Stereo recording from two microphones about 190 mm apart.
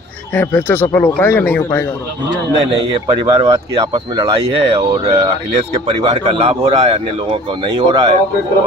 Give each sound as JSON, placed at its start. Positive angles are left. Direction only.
{"t": 0.3, "sound": "speech", "side_deg": 10}
{"t": 2.9, "sound": "speech", "side_deg": -25}